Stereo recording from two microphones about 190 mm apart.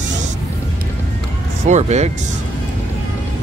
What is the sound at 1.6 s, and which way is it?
Speech, 35° right (ahead or behind).